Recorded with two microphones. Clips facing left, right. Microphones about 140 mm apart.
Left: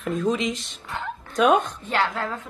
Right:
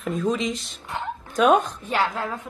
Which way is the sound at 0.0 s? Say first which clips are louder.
Left 1 dB; centre (ahead or behind).